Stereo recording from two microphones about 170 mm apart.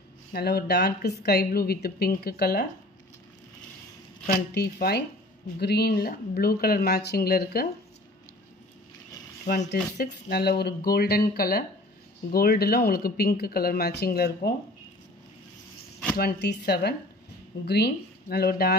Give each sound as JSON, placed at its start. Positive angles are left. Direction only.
{"t": 0.3, "sound": "a woman's voice", "side_deg": 70}
{"t": 4.3, "sound": "a woman's voice", "side_deg": 65}
{"t": 9.5, "sound": "a woman's voice", "side_deg": 70}
{"t": 16.2, "sound": "a woman's voice", "side_deg": 70}